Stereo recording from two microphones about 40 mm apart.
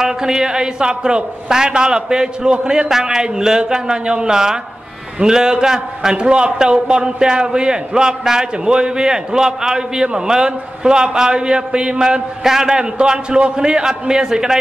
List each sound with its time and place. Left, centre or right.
0.0 s a man's voice: centre